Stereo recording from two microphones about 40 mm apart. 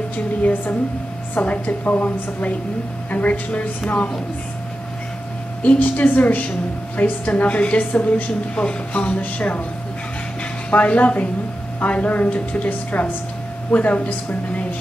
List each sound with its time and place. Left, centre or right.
0.4 s a woman's voice: left
1.4 s a woman's voice: left
5.6 s a woman's voice: left
8.5 s speech: left
9.2 s a woman's voice: left
10.7 s a woman's voice: left